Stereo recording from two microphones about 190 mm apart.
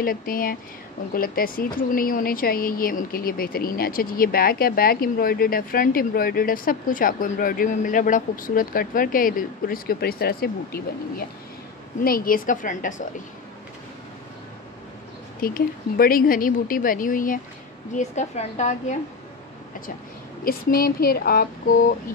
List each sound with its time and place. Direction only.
0.0 s speech: 50° left (ahead or behind)
15.4 s a woman's voice: 50° left (ahead or behind)
20.4 s speech: 50° left (ahead or behind)